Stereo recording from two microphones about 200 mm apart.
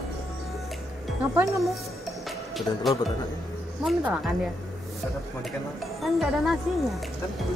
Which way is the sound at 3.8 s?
5° right (ahead or behind).